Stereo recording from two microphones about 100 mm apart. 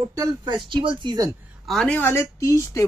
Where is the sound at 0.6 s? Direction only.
55° right (ahead or behind).